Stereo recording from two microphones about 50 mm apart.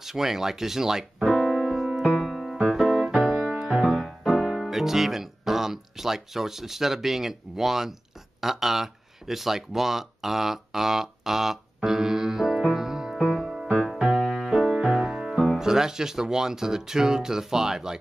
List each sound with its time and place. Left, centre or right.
0.0 s speech: centre
1.7 s music: centre
2.7 s keyboard: centre
3.3 s music: centre
4.3 s music: centre
4.6 s speech: centre
8.4 s a sound: centre
13.8 s music: centre
14.1 s music: centre
14.4 s music: centre
15.3 s music: centre
15.6 s speech: centre